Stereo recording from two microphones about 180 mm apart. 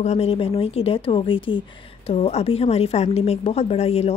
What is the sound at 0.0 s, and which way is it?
A woman's voice, 35° left (ahead or behind).